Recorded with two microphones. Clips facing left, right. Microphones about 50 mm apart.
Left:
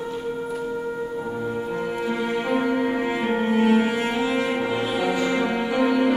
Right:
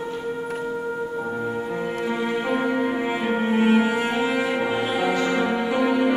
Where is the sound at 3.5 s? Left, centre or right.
Right.